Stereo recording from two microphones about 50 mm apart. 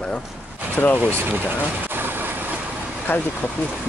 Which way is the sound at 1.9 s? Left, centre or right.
Right.